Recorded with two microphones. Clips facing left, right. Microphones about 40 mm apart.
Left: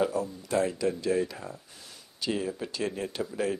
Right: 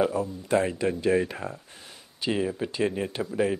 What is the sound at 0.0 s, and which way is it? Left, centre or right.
Speech, right.